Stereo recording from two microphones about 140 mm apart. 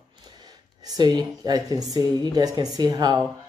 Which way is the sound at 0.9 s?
30° right (ahead or behind).